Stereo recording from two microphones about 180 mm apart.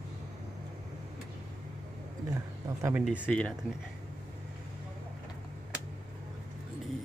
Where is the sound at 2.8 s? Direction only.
5° right (ahead or behind).